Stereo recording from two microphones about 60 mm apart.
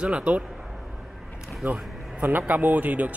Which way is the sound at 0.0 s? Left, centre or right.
Centre.